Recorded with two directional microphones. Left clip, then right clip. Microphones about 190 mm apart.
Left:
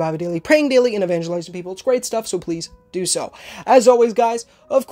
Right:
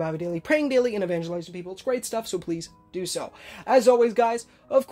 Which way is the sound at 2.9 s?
40° left (ahead or behind).